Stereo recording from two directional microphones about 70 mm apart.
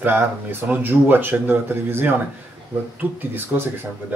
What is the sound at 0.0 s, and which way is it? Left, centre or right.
Speech, right.